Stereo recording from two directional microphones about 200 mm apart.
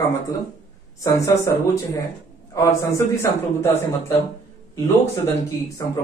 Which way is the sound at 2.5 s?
15° left (ahead or behind).